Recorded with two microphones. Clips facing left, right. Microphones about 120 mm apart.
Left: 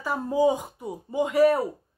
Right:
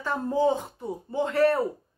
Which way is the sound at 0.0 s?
10° left (ahead or behind).